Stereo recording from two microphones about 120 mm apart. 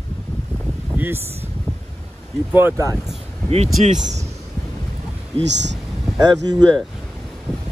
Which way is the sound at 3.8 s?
80° right.